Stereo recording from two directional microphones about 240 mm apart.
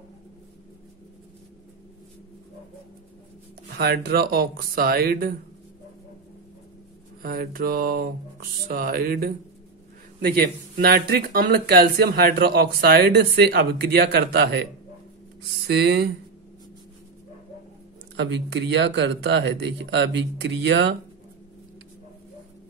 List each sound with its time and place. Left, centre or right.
3.7 s speech: right
7.2 s speech: right
15.6 s speech: right
18.1 s speech: right